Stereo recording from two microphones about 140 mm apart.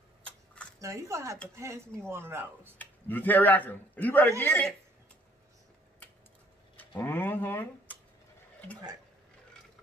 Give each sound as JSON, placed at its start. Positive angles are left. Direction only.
{"t": 0.7, "sound": "speech", "side_deg": -20}
{"t": 2.8, "sound": "speech", "side_deg": 15}
{"t": 6.8, "sound": "speech", "side_deg": 15}